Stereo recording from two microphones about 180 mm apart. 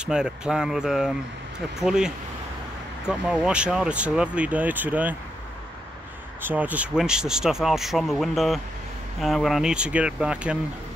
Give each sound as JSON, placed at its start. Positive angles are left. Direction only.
{"t": 0.0, "sound": "speech", "side_deg": -5}
{"t": 6.4, "sound": "speech", "side_deg": -10}